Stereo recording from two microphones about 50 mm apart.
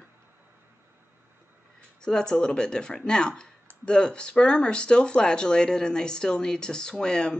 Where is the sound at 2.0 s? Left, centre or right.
Centre.